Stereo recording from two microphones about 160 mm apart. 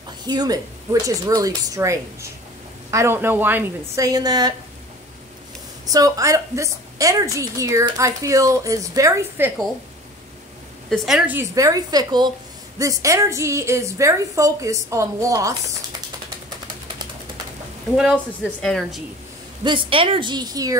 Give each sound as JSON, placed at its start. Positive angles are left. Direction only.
{"t": 0.3, "sound": "a woman's voice", "side_deg": -25}
{"t": 5.9, "sound": "a woman's voice", "side_deg": -20}
{"t": 10.9, "sound": "a woman's voice", "side_deg": -5}
{"t": 11.5, "sound": "a woman's voice", "side_deg": -20}
{"t": 18.1, "sound": "a woman's voice", "side_deg": 5}
{"t": 19.6, "sound": "a woman's voice", "side_deg": -30}